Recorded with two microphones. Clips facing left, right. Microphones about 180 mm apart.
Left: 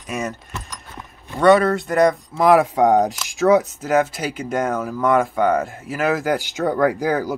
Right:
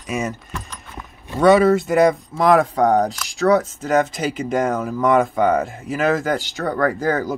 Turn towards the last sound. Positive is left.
turn(degrees=10)  # may be behind; listen again after turning